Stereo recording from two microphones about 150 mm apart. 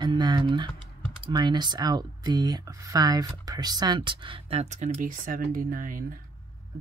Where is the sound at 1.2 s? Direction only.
30° right (ahead or behind).